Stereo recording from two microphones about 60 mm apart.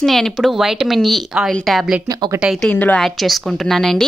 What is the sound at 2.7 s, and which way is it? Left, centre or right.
Speech, left.